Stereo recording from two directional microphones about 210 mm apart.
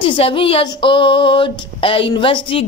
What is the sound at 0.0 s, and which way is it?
Speech, 25° left (ahead or behind).